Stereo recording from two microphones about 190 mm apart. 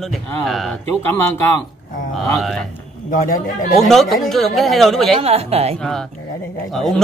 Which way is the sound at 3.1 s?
45° left (ahead or behind).